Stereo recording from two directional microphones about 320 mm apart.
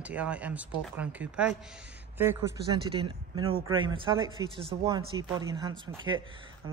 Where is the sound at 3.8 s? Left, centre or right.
Centre.